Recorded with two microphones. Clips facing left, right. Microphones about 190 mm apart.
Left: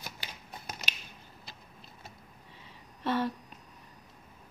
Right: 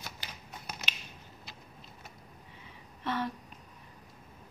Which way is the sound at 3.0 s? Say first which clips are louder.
Left 4 dB; 30° left (ahead or behind).